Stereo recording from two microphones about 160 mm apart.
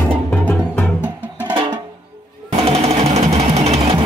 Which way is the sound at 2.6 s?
40° right (ahead or behind).